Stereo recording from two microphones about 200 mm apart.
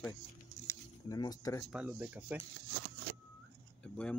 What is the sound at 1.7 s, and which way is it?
Speech, 5° right (ahead or behind).